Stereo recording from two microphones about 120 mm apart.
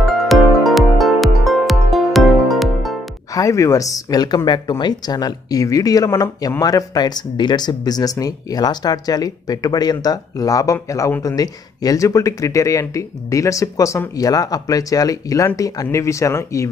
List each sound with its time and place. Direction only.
0.3 s music: centre (ahead or behind)
3.3 s speech: 25° left (ahead or behind)